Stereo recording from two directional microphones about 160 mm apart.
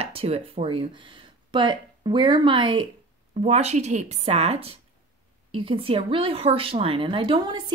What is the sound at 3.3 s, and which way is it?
Speech, 40° right (ahead or behind).